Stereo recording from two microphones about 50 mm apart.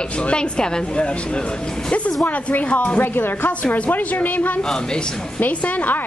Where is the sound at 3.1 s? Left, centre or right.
Left.